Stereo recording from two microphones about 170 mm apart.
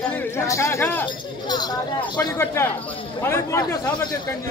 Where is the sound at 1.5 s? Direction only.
25° left (ahead or behind).